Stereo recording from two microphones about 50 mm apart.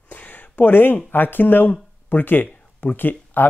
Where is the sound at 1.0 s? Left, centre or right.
Left.